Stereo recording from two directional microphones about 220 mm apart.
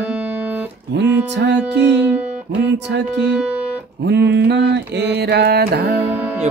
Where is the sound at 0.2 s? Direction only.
5° right (ahead or behind).